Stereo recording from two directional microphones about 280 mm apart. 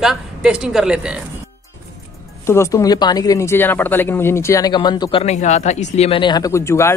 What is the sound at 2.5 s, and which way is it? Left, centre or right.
Speech, centre.